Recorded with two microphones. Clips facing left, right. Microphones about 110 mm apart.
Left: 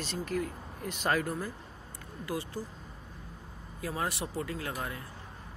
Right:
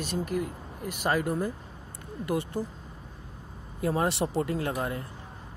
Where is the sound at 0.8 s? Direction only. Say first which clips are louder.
Right 3 dB; 10° right (ahead or behind).